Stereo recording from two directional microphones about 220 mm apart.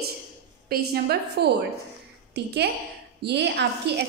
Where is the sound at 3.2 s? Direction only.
50° right (ahead or behind).